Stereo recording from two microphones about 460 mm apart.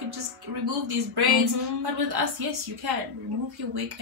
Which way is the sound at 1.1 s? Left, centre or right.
Right.